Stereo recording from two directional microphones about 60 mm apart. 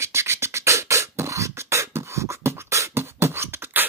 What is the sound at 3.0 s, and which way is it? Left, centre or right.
Beatboxing, right.